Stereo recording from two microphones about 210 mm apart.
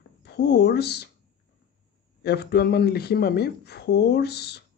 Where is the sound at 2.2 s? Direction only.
50° left (ahead or behind).